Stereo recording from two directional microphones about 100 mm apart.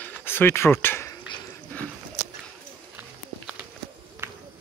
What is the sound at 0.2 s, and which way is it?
Speech, 20° left (ahead or behind).